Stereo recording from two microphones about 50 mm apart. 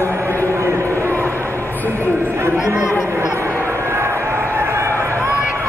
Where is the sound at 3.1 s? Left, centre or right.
Right.